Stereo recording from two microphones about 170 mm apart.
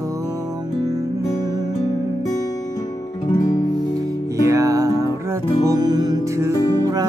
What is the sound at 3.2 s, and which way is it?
Music, 25° left (ahead or behind).